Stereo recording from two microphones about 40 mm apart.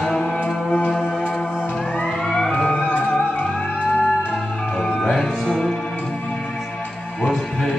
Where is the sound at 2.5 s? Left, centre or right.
Left.